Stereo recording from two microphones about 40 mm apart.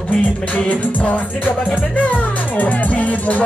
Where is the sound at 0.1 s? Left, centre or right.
Left.